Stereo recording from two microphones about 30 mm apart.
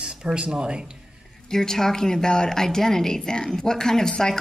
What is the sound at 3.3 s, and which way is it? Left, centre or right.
A woman's voice, left.